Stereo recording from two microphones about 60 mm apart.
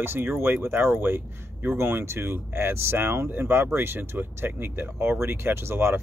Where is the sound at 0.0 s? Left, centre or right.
Right.